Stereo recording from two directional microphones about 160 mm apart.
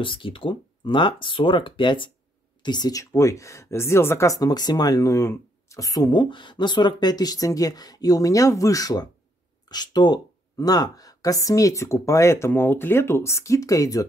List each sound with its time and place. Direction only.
0.0 s speech: 30° left (ahead or behind)